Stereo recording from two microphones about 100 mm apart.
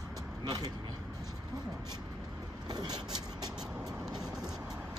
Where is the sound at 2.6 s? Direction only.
45° right (ahead or behind).